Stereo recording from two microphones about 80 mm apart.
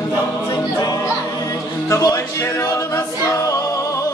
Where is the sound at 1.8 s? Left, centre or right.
Left.